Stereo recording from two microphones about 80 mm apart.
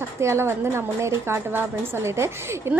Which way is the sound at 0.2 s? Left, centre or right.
Right.